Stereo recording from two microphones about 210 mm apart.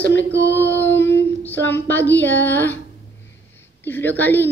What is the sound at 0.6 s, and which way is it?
Speech, 10° left (ahead or behind).